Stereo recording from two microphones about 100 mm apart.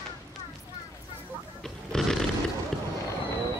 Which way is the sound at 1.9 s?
5° left (ahead or behind).